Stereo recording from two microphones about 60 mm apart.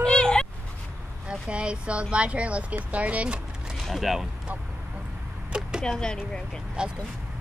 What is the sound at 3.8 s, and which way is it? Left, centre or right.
Speech, centre.